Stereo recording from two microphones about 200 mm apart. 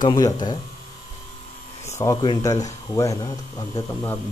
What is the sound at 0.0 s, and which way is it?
Mantra, 20° left (ahead or behind).